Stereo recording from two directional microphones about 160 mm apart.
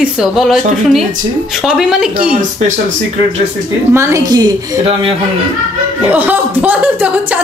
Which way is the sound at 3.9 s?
15° right (ahead or behind).